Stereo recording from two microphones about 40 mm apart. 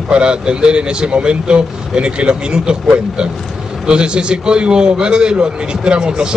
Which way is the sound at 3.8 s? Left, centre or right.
Right.